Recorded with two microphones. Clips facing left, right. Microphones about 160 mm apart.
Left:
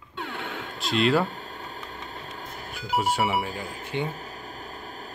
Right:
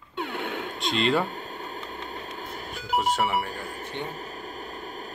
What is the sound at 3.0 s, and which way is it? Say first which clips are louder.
Speech: left 1 dB; 5° left (ahead or behind).